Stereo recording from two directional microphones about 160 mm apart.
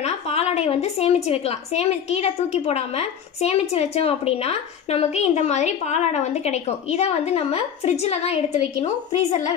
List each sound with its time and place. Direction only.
0.0 s a woman's voice: 40° left (ahead or behind)